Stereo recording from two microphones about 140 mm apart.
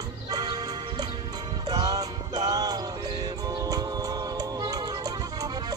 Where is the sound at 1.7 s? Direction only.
30° right (ahead or behind).